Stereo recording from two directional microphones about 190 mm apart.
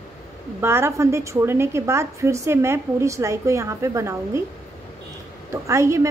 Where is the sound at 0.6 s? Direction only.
10° right (ahead or behind).